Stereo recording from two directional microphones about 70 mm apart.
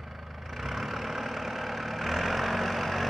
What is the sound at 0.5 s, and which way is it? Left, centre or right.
Vehicle, centre.